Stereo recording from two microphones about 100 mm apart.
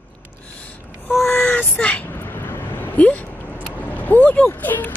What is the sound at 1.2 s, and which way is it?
Vehicle, 25° left (ahead or behind).